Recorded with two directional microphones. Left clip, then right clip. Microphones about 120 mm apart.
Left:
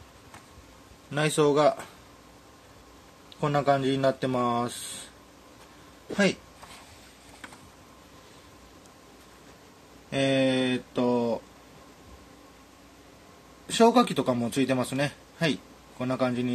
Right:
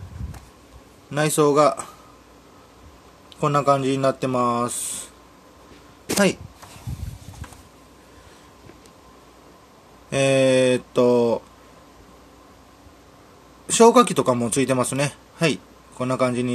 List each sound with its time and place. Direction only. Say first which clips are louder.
1.1 s speech: right 5 dB; 5° right (ahead or behind)
3.3 s speech: right 6 dB; 15° right (ahead or behind)
10.0 s speech: right 7 dB; 50° right (ahead or behind)
13.7 s a man's voice: right 7 dB; 35° right (ahead or behind)